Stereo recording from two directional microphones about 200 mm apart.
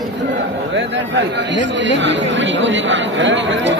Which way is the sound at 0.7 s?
65° right (ahead or behind).